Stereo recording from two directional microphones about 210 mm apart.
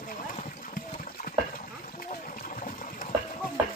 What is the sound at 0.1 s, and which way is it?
Horse, 40° left (ahead or behind).